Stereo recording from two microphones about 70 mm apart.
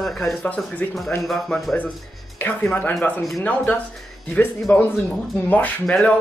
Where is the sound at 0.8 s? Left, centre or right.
Left.